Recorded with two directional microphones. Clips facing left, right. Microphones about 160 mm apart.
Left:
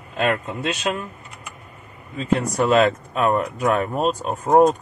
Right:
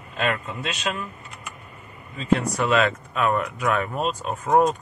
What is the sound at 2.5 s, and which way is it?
Speech, 40° left (ahead or behind).